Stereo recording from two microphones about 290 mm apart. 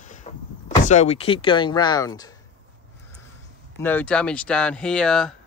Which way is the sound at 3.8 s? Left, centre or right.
Centre.